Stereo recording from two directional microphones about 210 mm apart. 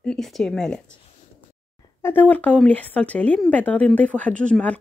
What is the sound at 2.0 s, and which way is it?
Speech, 10° left (ahead or behind).